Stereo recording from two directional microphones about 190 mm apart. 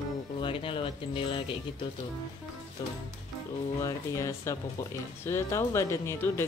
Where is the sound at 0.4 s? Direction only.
25° left (ahead or behind).